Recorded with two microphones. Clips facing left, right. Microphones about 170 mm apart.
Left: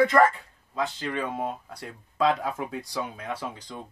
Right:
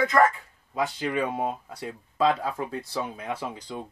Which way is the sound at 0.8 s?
10° right (ahead or behind).